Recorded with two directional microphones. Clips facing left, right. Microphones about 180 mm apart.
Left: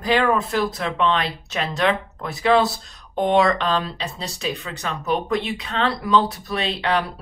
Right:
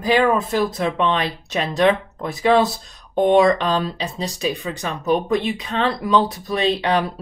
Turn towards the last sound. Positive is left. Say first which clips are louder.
# right 4 dB
turn(degrees=-15)  # may be behind; listen again after turning